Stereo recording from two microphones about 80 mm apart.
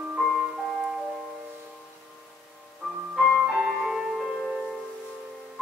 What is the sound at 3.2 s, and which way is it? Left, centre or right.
Music, centre.